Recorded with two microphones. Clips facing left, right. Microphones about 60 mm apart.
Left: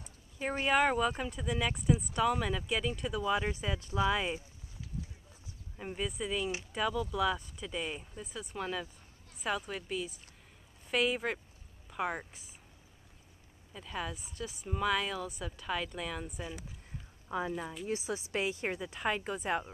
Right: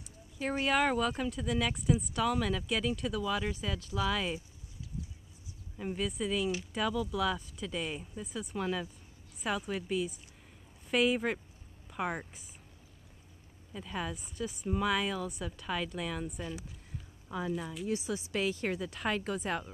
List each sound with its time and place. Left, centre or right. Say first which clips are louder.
0.7 s a woman's voice: left 1 dB; centre
3.2 s speech: left 1 dB; centre
5.8 s a woman's voice: right 2 dB; centre
13.7 s a woman's voice: right 1 dB; centre
17.3 s speech: even; left
18.4 s speech: right 4 dB; centre